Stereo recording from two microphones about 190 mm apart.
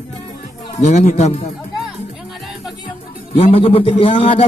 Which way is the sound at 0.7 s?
35° left (ahead or behind).